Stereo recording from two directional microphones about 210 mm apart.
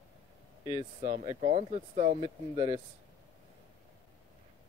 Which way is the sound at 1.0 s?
30° right (ahead or behind).